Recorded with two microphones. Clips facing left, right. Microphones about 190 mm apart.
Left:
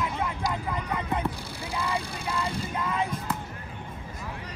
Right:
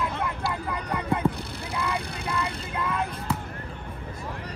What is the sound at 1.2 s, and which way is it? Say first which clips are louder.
Vehicle: right 4 dB; 60° right (ahead or behind).